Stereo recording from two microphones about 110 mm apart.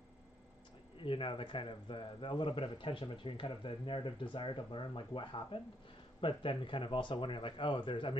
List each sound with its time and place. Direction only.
1.0 s a man's voice: 50° left (ahead or behind)